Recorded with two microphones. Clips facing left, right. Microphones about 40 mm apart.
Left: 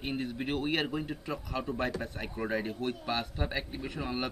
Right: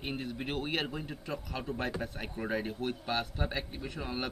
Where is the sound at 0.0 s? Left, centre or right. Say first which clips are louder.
Left 3 dB; centre.